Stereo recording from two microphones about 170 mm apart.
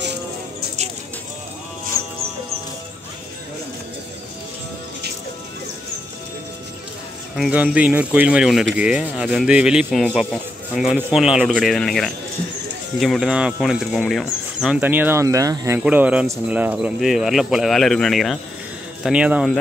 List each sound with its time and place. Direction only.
2.0 s music: 20° left (ahead or behind)
7.3 s speech: 5° right (ahead or behind)
15.8 s speech: 10° right (ahead or behind)